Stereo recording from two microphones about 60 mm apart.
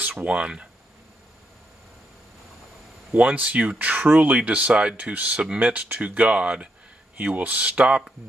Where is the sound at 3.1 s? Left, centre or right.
Right.